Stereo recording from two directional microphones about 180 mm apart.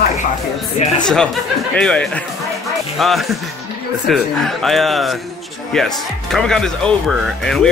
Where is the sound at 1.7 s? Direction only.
5° left (ahead or behind).